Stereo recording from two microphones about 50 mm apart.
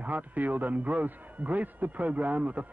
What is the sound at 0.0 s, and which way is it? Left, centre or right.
A man's voice, right.